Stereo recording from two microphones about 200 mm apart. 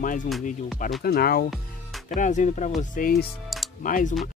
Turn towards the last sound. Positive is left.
turn(degrees=40)  # may be behind; listen again after turning